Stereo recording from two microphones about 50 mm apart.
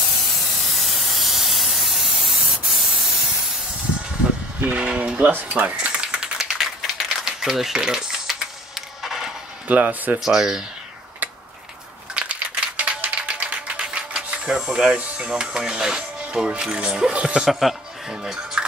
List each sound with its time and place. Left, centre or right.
0.4 s spray: centre
4.6 s speech: right
5.9 s typing: right
6.6 s a sound: centre
9.7 s speech: right
10.2 s speech: centre
11.2 s a sound: right
12.1 s typewriter: right
14.3 s speech: centre
17.4 s speech: centre